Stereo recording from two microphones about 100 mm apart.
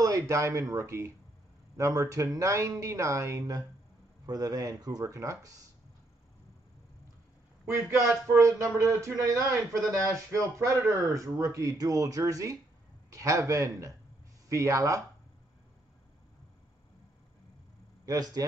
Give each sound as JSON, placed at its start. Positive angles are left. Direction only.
{"t": 0.0, "sound": "speech", "side_deg": -35}
{"t": 7.6, "sound": "speech", "side_deg": -25}
{"t": 18.0, "sound": "speech", "side_deg": -35}